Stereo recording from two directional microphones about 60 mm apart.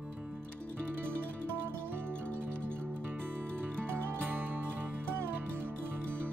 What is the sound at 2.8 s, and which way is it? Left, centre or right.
Music, right.